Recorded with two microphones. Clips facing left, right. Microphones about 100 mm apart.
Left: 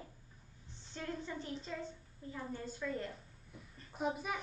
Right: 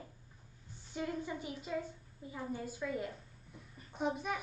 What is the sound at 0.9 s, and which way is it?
A woman's voice, 10° right (ahead or behind).